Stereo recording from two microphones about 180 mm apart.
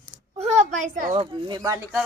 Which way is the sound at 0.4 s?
40° right (ahead or behind).